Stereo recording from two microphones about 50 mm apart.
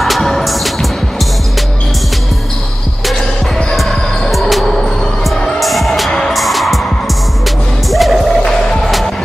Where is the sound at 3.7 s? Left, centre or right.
Centre.